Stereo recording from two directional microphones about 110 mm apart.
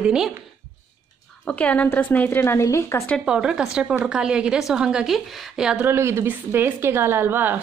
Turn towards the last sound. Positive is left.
turn(degrees=-20)  # may be behind; listen again after turning